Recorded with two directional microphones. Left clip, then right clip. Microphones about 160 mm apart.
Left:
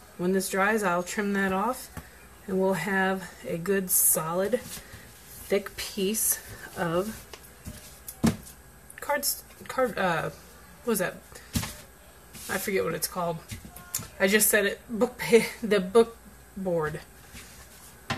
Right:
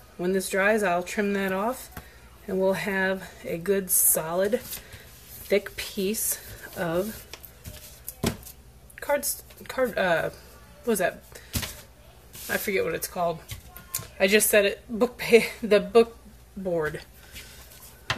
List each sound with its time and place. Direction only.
0.2 s a woman's voice: 5° left (ahead or behind)
9.0 s a sound: 5° left (ahead or behind)
9.9 s a woman's voice: 10° left (ahead or behind)
12.4 s a woman's voice: 5° left (ahead or behind)
16.7 s speech: centre (ahead or behind)